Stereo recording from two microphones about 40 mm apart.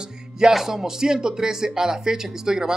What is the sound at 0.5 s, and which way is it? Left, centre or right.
Speech, centre.